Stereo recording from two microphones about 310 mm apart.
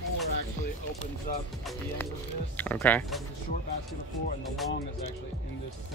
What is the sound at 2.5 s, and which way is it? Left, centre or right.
Speech, centre.